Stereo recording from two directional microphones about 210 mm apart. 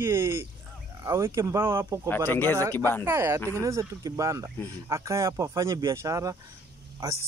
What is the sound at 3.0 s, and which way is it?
Speech, 10° right (ahead or behind).